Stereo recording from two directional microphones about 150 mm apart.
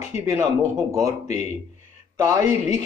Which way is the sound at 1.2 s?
50° left (ahead or behind).